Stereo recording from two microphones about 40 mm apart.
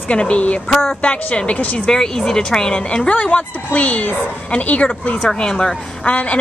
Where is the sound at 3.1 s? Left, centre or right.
Left.